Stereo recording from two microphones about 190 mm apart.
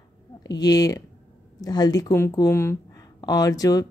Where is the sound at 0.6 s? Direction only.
20° left (ahead or behind).